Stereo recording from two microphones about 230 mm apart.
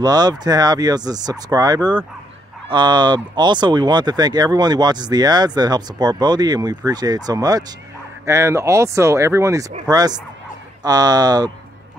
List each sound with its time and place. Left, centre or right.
0.0 s speech: centre